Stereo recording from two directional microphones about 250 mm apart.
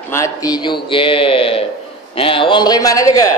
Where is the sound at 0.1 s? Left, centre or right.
Centre.